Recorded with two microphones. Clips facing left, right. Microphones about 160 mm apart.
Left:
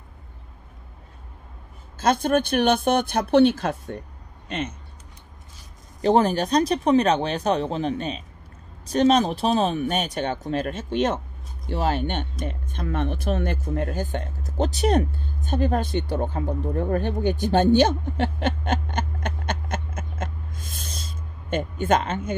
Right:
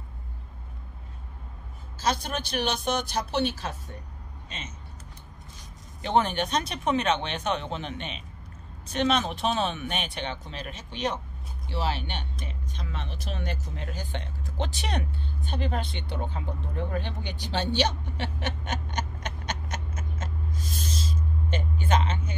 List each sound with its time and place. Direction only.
2.0 s speech: 50° left (ahead or behind)
5.9 s speech: 35° left (ahead or behind); by 22.3 s 50° left (ahead or behind)